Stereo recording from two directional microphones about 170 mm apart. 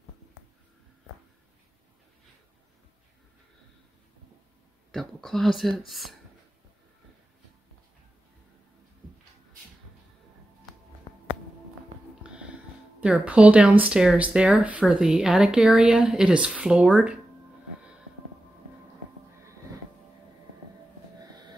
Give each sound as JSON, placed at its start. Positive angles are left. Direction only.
{"t": 4.9, "sound": "speech", "side_deg": 0}
{"t": 11.1, "sound": "a sound", "side_deg": 30}
{"t": 13.0, "sound": "speech", "side_deg": -5}
{"t": 21.2, "sound": "train", "side_deg": -25}